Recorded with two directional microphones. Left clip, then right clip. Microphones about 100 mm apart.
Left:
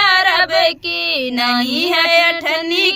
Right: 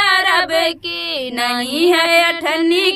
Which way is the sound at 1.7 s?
45° right (ahead or behind).